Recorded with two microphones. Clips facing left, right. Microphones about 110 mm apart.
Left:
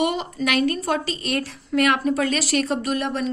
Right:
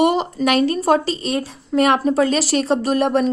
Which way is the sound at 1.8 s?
30° right (ahead or behind).